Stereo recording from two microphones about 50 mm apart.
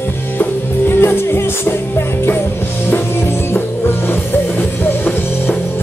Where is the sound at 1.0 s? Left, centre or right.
Left.